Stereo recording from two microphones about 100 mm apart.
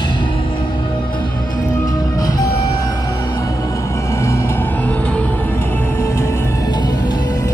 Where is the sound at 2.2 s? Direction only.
40° left (ahead or behind).